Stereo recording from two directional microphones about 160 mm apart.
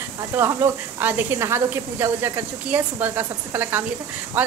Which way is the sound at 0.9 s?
10° right (ahead or behind).